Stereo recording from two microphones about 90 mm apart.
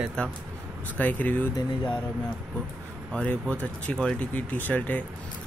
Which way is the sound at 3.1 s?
15° left (ahead or behind).